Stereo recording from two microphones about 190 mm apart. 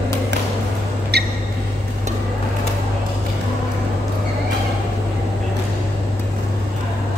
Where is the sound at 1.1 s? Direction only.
60° right (ahead or behind).